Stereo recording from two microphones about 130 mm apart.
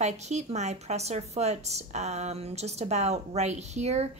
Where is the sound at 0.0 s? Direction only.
60° right (ahead or behind).